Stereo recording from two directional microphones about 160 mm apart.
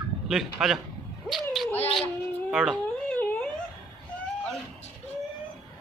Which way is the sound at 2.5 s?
Centre (ahead or behind).